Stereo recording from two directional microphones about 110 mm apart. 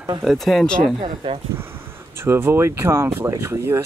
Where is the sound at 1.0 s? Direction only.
55° right (ahead or behind).